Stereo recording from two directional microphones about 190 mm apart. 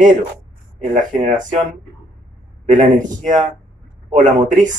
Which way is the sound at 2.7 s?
40° right (ahead or behind).